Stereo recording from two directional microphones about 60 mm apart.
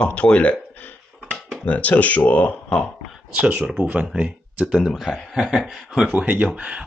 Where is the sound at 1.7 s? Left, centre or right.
Left.